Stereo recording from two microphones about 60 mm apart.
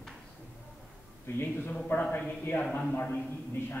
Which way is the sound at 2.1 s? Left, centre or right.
Left.